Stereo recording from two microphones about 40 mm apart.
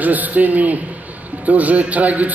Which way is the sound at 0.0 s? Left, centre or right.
Right.